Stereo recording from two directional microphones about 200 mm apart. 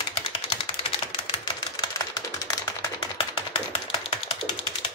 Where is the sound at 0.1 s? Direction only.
25° left (ahead or behind).